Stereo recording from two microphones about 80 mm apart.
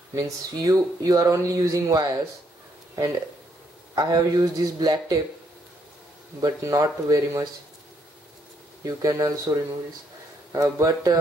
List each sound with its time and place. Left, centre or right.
0.1 s speech: right
3.9 s a man's voice: right
6.6 s speech: right
8.8 s speech: right